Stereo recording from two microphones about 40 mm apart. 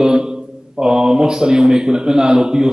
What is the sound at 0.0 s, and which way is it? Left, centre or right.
A man's voice, centre.